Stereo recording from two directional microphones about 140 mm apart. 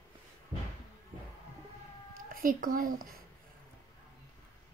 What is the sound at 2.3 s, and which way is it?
Speech, 80° right.